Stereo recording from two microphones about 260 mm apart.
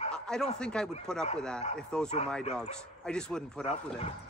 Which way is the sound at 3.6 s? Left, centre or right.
Left.